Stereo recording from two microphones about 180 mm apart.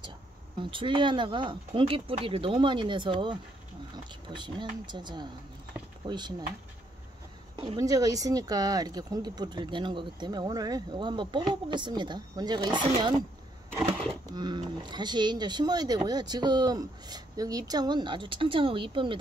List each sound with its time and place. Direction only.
0.6 s speech: 30° right (ahead or behind)
7.5 s speech: 25° right (ahead or behind)
14.3 s speech: 25° right (ahead or behind)